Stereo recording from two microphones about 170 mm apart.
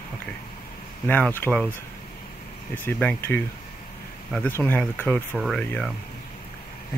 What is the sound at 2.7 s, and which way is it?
Speech, 10° left (ahead or behind).